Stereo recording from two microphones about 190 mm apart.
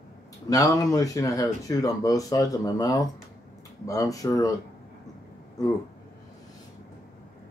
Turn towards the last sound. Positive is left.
turn(degrees=20)  # may be behind; listen again after turning